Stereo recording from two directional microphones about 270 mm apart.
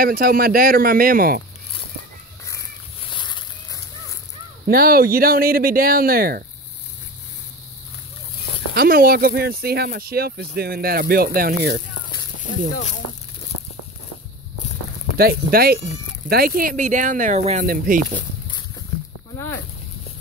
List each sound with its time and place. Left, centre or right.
0.0 s speech: right
2.4 s a sound: centre
4.6 s speech: right
8.7 s speech: right
15.1 s speech: right